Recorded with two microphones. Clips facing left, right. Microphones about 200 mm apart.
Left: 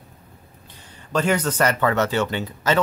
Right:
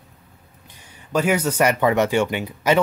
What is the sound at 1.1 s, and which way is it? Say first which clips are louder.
Speech: right 1 dB; 10° right (ahead or behind).